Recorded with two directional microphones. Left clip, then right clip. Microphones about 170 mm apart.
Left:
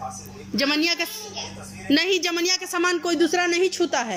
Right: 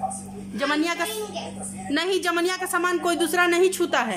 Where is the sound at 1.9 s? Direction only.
10° left (ahead or behind).